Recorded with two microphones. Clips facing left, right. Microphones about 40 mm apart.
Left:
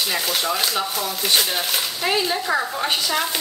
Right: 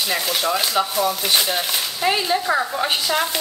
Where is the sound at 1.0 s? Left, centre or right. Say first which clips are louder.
Right 5 dB; centre.